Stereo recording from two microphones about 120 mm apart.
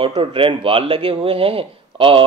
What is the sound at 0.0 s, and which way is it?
Speech, 45° right (ahead or behind).